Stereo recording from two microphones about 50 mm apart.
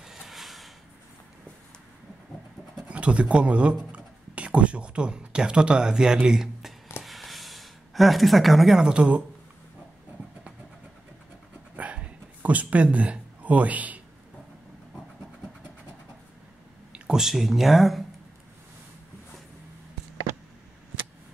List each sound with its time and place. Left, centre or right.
0.0 s a sound: centre
2.9 s speech: right
7.0 s gasp: centre
8.8 s speech: right
11.7 s a sound: right
12.4 s a man's voice: right
16.9 s speech: centre